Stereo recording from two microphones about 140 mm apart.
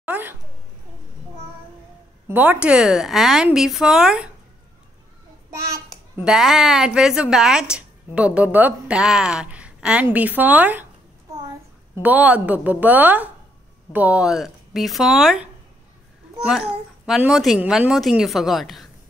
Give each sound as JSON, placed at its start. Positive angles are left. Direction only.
{"t": 0.0, "sound": "a sound", "side_deg": -15}
{"t": 2.2, "sound": "a woman's voice", "side_deg": -15}
{"t": 5.5, "sound": "child singing", "side_deg": -20}
{"t": 6.2, "sound": "a woman's voice", "side_deg": -5}
{"t": 12.0, "sound": "a woman's voice", "side_deg": -10}
{"t": 16.4, "sound": "a woman's voice", "side_deg": -5}